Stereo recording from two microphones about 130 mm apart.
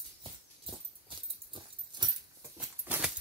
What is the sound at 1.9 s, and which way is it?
Dog, 35° right (ahead or behind).